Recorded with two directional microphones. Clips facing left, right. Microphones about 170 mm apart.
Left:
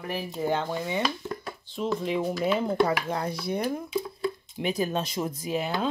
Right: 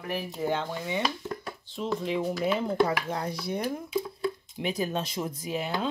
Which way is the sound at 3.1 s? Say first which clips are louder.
Left 2 dB; 60° left (ahead or behind).